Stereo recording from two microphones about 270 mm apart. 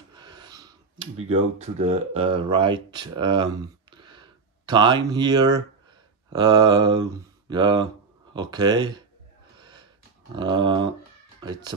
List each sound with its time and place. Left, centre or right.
0.1 s speech: centre
9.6 s a sound: centre
11.4 s speech: centre